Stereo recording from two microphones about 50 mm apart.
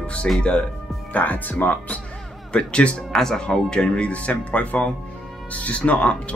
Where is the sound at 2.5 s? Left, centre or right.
Centre.